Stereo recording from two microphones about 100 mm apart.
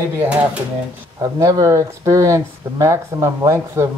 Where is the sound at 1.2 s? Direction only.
35° right (ahead or behind).